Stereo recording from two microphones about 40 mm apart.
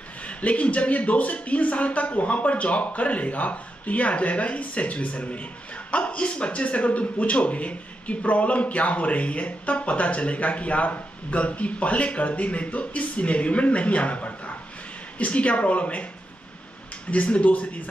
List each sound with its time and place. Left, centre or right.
0.2 s speech: left
17.1 s speech: left